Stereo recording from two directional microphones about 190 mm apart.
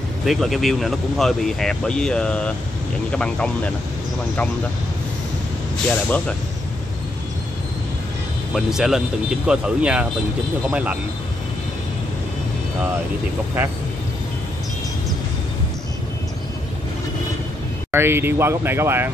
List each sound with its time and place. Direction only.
0.2 s speech: centre (ahead or behind)
6.0 s speech: 5° left (ahead or behind)
8.5 s speech: centre (ahead or behind)
17.9 s speech: 10° right (ahead or behind)